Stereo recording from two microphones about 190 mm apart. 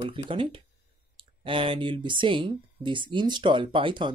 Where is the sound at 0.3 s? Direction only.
25° right (ahead or behind).